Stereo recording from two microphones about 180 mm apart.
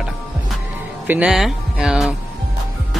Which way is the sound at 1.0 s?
5° right (ahead or behind).